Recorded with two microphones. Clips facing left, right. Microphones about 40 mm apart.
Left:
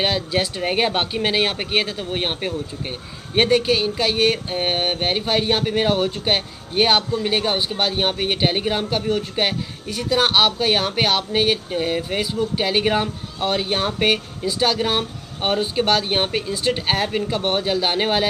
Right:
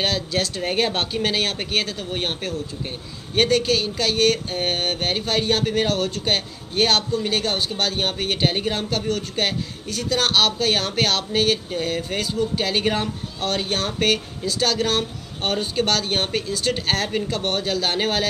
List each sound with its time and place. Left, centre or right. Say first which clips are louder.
0.0 s speech: left 2 dB; centre